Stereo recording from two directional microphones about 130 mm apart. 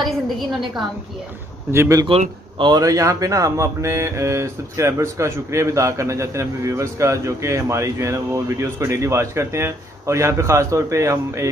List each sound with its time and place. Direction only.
0.0 s a woman's voice: centre (ahead or behind)
1.7 s speech: 25° right (ahead or behind)
2.0 s a man's voice: 45° right (ahead or behind)
2.7 s speech: 25° right (ahead or behind)